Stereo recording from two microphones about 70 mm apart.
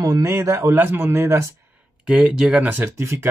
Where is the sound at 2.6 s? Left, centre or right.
Right.